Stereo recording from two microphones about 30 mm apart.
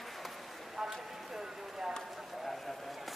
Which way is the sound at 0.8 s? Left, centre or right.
Centre.